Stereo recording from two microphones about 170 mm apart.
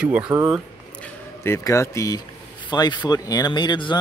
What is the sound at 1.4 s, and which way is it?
A man's voice, 15° left (ahead or behind).